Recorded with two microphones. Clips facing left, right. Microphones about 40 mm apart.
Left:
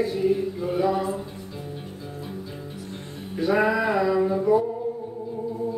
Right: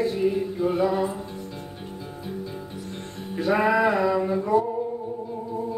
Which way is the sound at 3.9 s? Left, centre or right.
Centre.